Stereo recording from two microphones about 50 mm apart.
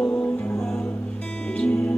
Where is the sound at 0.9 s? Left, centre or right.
Left.